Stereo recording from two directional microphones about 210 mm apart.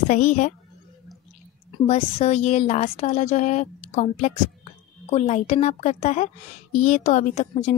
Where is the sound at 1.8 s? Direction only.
30° left (ahead or behind).